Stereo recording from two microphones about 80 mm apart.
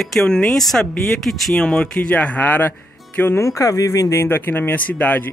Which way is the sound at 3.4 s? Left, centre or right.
Left.